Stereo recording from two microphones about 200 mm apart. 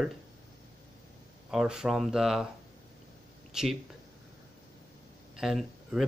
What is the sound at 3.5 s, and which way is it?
Speech, 5° right (ahead or behind).